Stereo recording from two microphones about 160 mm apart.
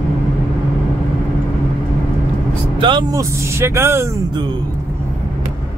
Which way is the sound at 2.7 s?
30° right (ahead or behind).